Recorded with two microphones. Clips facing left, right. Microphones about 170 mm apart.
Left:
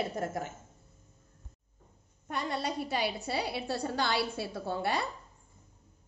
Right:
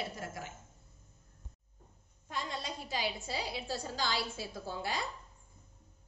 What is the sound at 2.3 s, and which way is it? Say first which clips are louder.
A woman's voice: left 6 dB; 65° left (ahead or behind).